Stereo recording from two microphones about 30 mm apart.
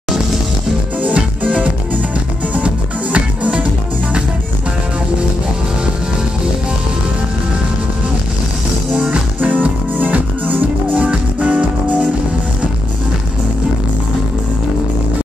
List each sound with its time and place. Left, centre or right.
1.0 s music: right
9.4 s music: right
11.0 s music: right